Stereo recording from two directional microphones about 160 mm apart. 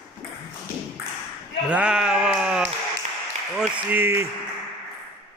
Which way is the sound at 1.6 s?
10° right (ahead or behind).